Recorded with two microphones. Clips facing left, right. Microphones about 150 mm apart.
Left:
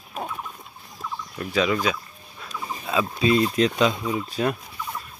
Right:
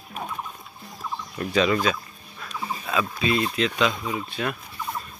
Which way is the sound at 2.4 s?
20° left (ahead or behind).